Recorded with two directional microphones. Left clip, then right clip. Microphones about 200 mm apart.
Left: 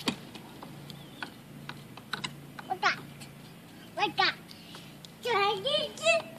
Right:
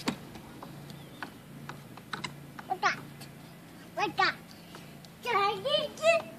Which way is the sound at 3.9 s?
5° right (ahead or behind).